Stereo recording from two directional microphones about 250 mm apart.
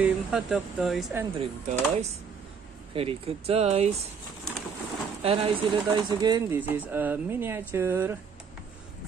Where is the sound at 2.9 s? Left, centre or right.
Right.